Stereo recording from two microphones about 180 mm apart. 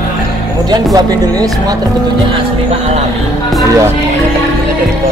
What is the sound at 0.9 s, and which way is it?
Speech, 20° right (ahead or behind).